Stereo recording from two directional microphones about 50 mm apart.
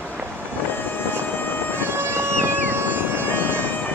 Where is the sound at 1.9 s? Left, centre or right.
Right.